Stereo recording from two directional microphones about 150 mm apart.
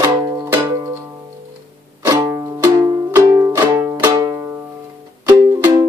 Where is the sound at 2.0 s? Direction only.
20° right (ahead or behind).